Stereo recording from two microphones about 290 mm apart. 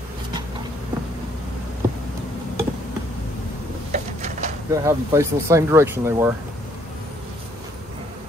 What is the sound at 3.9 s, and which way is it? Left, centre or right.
Bird, right.